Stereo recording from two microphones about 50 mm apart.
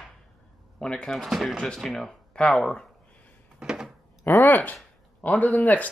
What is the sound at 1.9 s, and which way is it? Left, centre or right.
Speech, centre.